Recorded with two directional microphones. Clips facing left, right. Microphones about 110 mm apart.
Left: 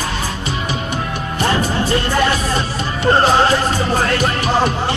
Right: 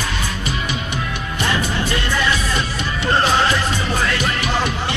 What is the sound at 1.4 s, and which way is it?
Speech, 35° left (ahead or behind).